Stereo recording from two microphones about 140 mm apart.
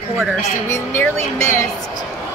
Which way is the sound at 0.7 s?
20° left (ahead or behind).